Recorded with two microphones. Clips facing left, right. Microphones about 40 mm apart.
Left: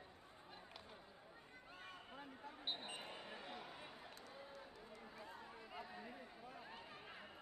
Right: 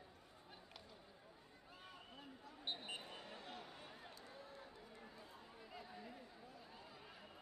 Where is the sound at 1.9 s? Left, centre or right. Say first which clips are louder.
Left 2 dB; left.